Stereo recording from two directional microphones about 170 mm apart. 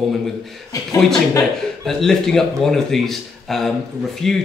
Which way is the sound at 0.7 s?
20° left (ahead or behind).